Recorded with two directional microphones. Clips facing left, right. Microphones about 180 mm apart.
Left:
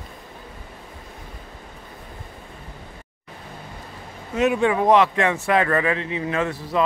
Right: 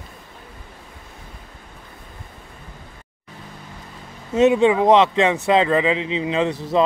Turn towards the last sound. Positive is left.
turn(degrees=-20)  # may be behind; listen again after turning